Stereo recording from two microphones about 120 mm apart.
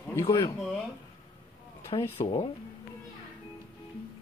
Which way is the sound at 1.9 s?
45° left (ahead or behind).